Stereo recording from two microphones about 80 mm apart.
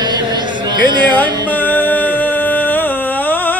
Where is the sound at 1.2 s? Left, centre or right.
Left.